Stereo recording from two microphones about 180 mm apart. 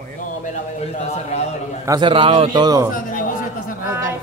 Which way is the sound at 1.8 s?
25° right (ahead or behind).